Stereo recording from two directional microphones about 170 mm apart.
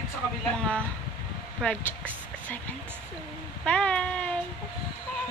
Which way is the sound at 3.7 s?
5° left (ahead or behind).